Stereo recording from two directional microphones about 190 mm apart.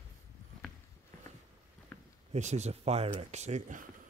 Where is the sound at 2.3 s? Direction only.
35° right (ahead or behind).